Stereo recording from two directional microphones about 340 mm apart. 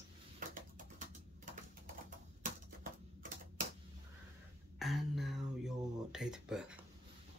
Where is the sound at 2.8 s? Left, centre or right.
Right.